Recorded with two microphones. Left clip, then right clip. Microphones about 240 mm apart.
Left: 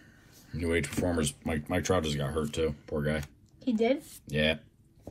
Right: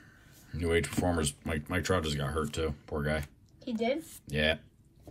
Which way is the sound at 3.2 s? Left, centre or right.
Left.